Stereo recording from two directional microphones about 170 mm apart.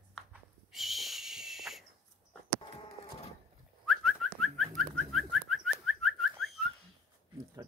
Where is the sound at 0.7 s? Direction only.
Centre (ahead or behind).